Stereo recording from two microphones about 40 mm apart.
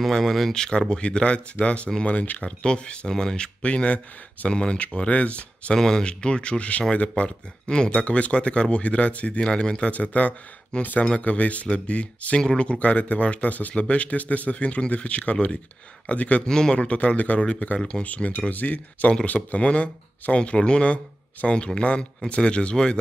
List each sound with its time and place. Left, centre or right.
0.2 s speech: centre
0.6 s speech: centre
3.6 s speech: left
5.8 s speech: centre
6.0 s speech: left
9.4 s speech: left
16.4 s speech: centre
16.7 s speech: left